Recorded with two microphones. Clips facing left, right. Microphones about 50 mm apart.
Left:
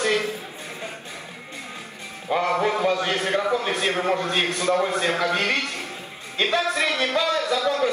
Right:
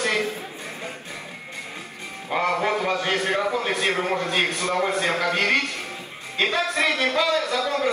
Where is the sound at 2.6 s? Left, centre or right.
Right.